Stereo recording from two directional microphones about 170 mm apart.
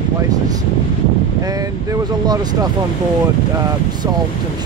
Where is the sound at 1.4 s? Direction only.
20° right (ahead or behind).